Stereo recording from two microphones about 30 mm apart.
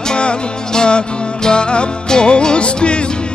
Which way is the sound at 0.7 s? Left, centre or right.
Left.